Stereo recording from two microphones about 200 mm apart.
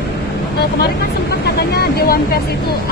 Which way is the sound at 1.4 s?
50° left (ahead or behind).